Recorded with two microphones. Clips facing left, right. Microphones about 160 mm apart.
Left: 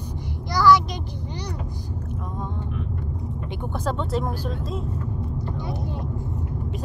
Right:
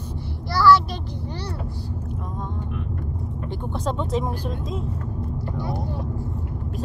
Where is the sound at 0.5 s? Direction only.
15° left (ahead or behind).